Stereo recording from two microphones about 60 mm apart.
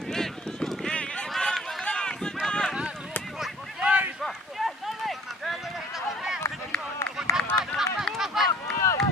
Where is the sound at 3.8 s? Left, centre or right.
Right.